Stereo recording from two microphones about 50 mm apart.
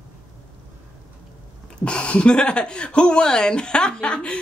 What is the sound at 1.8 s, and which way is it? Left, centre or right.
Speech, centre.